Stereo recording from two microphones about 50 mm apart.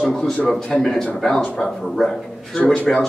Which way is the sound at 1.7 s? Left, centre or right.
Centre.